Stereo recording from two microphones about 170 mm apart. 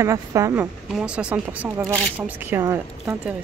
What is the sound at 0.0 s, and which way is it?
Speech, 20° right (ahead or behind).